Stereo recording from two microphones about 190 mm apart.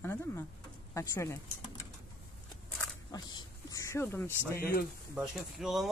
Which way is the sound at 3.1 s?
20° left (ahead or behind).